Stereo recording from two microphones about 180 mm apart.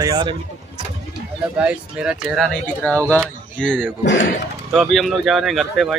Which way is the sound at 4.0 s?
85° left.